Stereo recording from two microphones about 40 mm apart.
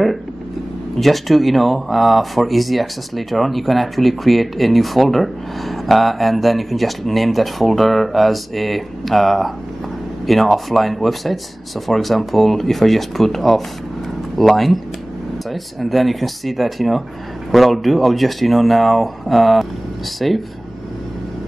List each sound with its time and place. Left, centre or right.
0.9 s speech: centre